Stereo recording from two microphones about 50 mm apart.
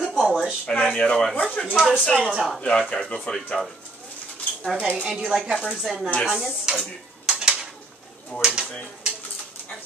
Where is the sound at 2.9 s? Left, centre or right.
Centre.